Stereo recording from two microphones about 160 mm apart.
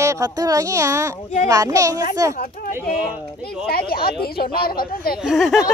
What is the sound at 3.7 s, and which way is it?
Speech, 70° left (ahead or behind).